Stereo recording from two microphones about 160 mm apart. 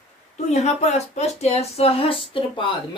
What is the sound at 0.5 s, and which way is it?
Speech, 45° left (ahead or behind).